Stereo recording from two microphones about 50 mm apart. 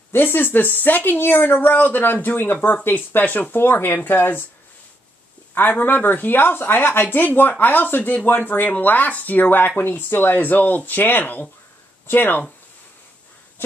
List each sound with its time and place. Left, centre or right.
0.1 s speech: left
5.5 s speech: left